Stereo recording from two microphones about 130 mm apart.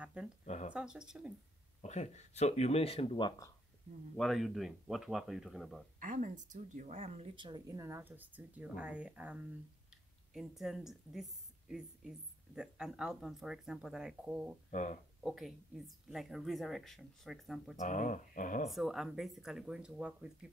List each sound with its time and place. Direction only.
0.0 s a sound: 10° right (ahead or behind)
0.5 s a sound: 60° left (ahead or behind)
0.7 s a woman's voice: 5° right (ahead or behind)
1.8 s speech: 60° left (ahead or behind); by 3.4 s 35° left (ahead or behind)
4.2 s a woman's voice: centre (ahead or behind)
5.9 s speech: 90° right; by 7.2 s 60° right (ahead or behind)
7.3 s a woman's voice: 35° right (ahead or behind)
7.6 s a woman's voice: 25° right (ahead or behind); by 11.2 s 5° right (ahead or behind)
12.5 s a woman's voice: 5° right (ahead or behind)
14.7 s speech: 75° left (ahead or behind)
15.2 s a woman's voice: centre (ahead or behind)
17.7 s speech: 70° left (ahead or behind); by 18.7 s 90° left
18.7 s a woman's voice: centre (ahead or behind)